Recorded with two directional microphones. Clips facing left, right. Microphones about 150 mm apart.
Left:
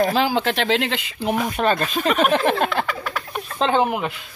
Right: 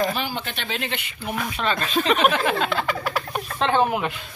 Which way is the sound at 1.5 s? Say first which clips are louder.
Left 4 dB; 45° left (ahead or behind).